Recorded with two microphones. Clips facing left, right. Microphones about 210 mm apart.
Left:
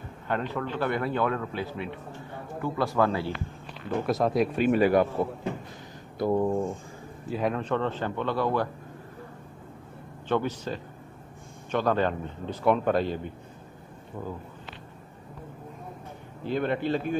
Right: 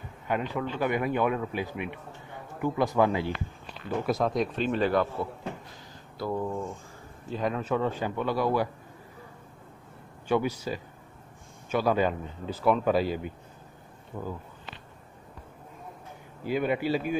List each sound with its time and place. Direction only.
0.3 s speech: 10° right (ahead or behind)
4.0 s speech: centre (ahead or behind)
6.1 s speech: 20° left (ahead or behind)
6.4 s speech: 35° left (ahead or behind)
7.2 s speech: 5° left (ahead or behind)
10.2 s speech: 10° right (ahead or behind)
16.4 s speech: 10° right (ahead or behind)